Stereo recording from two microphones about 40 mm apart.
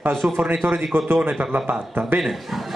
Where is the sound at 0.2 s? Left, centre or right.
Right.